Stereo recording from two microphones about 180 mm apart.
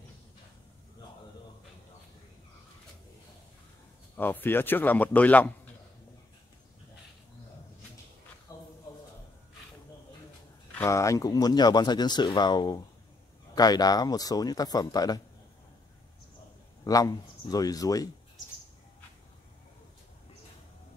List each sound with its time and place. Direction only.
4.2 s speech: 10° left (ahead or behind)
8.5 s a sound: 15° left (ahead or behind)
10.7 s speech: 15° left (ahead or behind)
16.8 s speech: 20° left (ahead or behind)